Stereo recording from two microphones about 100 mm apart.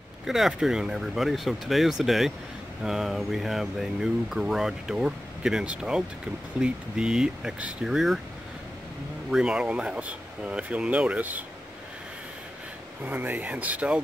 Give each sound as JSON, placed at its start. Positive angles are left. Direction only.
{"t": 0.3, "sound": "speech", "side_deg": -5}
{"t": 9.3, "sound": "speech", "side_deg": -5}
{"t": 13.0, "sound": "speech", "side_deg": -20}